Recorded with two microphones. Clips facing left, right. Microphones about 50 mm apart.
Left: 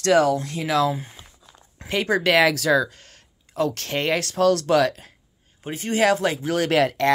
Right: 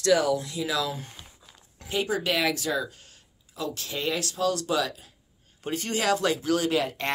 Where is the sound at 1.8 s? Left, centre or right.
Left.